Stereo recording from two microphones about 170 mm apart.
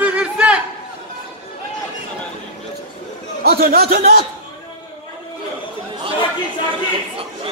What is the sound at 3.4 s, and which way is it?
Speech, 65° right (ahead or behind).